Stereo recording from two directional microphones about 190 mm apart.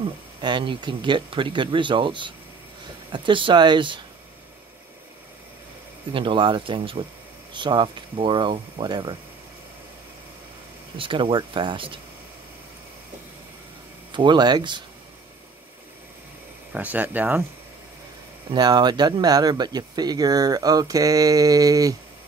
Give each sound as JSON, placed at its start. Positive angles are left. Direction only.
{"t": 0.0, "sound": "speech", "side_deg": -25}
{"t": 6.1, "sound": "speech", "side_deg": -25}
{"t": 11.0, "sound": "speech", "side_deg": -25}
{"t": 14.1, "sound": "speech", "side_deg": -25}
{"t": 16.7, "sound": "speech", "side_deg": -10}
{"t": 18.5, "sound": "speech", "side_deg": -20}